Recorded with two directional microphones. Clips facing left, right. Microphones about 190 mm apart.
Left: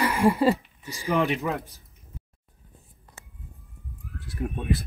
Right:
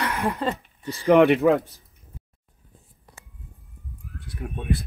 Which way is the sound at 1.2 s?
60° right (ahead or behind).